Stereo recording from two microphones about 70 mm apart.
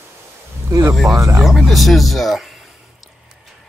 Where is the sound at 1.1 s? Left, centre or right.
Right.